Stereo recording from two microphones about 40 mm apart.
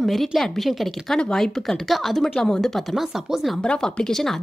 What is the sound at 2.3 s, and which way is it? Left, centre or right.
Speech, centre.